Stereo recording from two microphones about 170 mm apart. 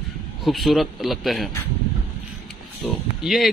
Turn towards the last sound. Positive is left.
turn(degrees=0)  # may be behind; listen again after turning